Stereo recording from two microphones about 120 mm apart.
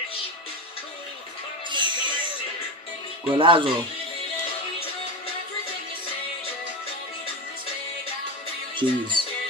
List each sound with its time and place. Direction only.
1.7 s music: 40° right (ahead or behind)
3.3 s speech: 45° right (ahead or behind)
8.7 s music: 40° right (ahead or behind)